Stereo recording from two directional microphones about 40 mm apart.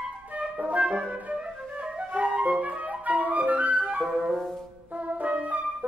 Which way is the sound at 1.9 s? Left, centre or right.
Right.